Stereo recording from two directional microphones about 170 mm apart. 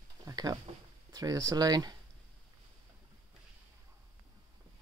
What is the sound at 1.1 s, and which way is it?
Speech, 20° right (ahead or behind).